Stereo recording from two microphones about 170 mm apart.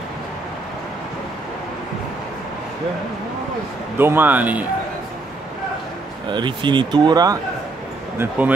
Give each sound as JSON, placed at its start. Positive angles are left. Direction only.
{"t": 4.0, "sound": "speech", "side_deg": -10}
{"t": 6.2, "sound": "speech", "side_deg": -25}
{"t": 8.2, "sound": "speech", "side_deg": -10}